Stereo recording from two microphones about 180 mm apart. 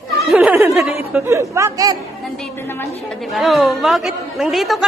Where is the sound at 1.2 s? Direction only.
15° right (ahead or behind).